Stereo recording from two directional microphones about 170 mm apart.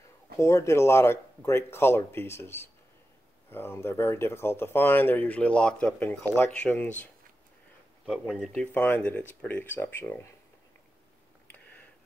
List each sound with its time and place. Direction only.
0.4 s speech: 15° left (ahead or behind)
8.1 s speech: centre (ahead or behind)
8.5 s speech: 10° left (ahead or behind)